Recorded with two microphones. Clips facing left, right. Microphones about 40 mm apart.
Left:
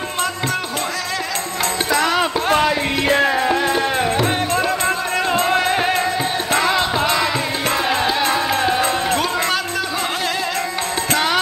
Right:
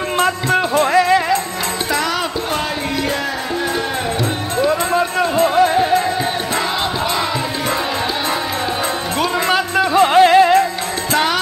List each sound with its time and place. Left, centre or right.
0.2 s music: right
9.9 s music: right